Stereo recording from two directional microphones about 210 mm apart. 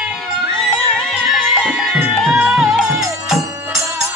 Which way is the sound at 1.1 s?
Centre (ahead or behind).